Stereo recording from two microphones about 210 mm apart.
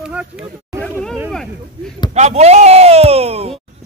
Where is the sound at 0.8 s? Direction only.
5° left (ahead or behind).